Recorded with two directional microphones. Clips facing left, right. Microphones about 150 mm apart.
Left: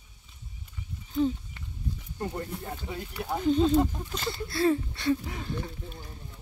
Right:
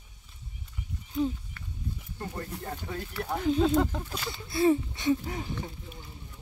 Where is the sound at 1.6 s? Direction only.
20° left (ahead or behind).